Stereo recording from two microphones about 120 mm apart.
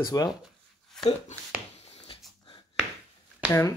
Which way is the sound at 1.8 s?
55° left (ahead or behind).